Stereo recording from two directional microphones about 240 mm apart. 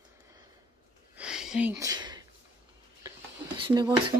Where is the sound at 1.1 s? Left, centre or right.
Centre.